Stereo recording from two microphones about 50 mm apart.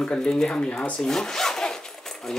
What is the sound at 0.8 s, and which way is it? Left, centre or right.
Zipper, centre.